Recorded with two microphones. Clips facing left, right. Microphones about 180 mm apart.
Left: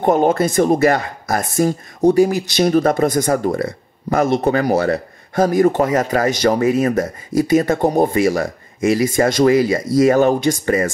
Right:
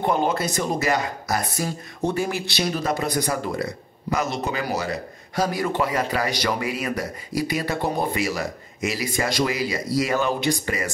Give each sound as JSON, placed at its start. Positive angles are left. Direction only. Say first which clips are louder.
{"t": 0.0, "sound": "speech", "louder": "left 8 dB", "side_deg": 50}